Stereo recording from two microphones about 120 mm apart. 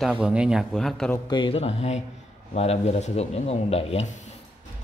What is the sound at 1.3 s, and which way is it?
Speech, 40° left (ahead or behind).